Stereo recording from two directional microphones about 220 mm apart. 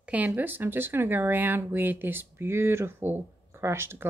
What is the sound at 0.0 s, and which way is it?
Speech, 5° right (ahead or behind).